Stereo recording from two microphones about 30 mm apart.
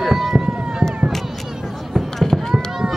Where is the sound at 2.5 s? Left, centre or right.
Centre.